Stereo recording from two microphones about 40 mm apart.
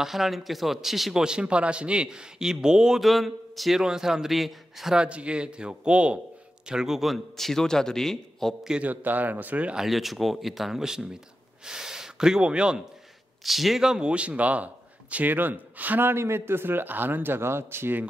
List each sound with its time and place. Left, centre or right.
0.0 s speech: centre
1.1 s a man's voice: right
3.0 s speech: centre
3.8 s speech: centre
4.9 s a man's voice: right
6.7 s speech: centre
7.3 s a man's voice: centre
8.8 s speech: right
9.8 s speech: centre
10.8 s speech: centre
13.4 s speech: centre
14.0 s speech: right
15.3 s speech: right
16.0 s a man's voice: right